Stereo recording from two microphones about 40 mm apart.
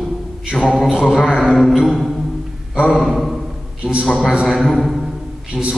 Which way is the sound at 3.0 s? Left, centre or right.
Centre.